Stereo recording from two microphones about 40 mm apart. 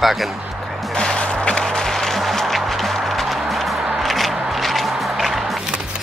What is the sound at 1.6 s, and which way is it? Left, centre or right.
Music, centre.